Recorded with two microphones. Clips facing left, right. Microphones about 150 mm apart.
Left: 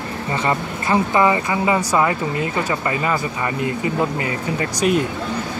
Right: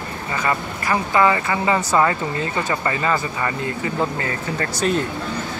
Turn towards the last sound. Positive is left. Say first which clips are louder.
# left 2 dB
turn(degrees=15)  # may be behind; listen again after turning